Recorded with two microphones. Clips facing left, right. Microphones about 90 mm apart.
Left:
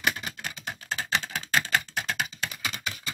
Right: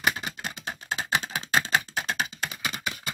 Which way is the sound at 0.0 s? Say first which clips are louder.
Right 2 dB; 20° right (ahead or behind).